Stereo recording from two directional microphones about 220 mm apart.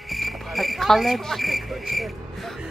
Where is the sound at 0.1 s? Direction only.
Centre (ahead or behind).